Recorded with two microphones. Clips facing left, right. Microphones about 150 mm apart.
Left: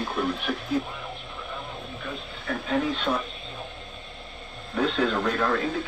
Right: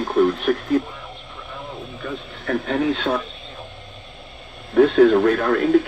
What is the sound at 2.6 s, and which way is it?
Speech, 90° right.